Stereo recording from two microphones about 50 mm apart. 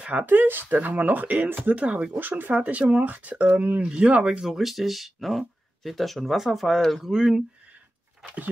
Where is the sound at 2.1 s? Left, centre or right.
Right.